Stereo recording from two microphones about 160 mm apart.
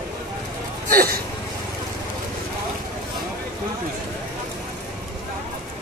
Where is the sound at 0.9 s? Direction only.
75° right (ahead or behind).